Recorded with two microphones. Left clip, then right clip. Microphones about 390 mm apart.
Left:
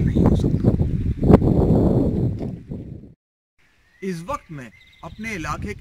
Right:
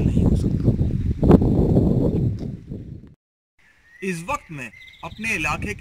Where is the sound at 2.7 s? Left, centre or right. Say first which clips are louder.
Left 2 dB; left.